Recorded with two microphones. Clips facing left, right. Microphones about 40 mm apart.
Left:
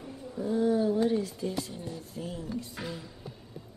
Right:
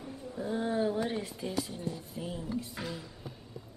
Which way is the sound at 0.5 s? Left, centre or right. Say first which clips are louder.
Left 5 dB; right.